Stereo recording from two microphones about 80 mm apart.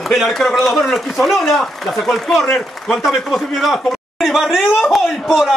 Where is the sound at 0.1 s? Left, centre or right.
Centre.